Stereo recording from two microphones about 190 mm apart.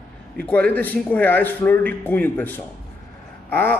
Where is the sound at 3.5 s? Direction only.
10° left (ahead or behind).